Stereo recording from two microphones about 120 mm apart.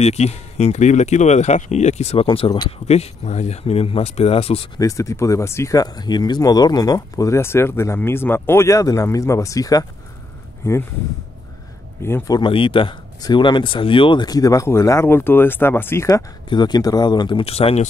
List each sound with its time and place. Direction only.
0.0 s speech: 65° left (ahead or behind)
2.2 s speech: 45° left (ahead or behind)
2.9 s speech: 65° left (ahead or behind)
4.7 s speech: 25° left (ahead or behind)
12.3 s speech: 40° left (ahead or behind); by 16.3 s 25° left (ahead or behind)
16.4 s speech: 35° left (ahead or behind)
17.5 s speech: 55° left (ahead or behind)